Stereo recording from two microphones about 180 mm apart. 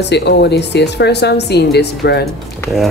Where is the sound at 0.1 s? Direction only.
70° left (ahead or behind).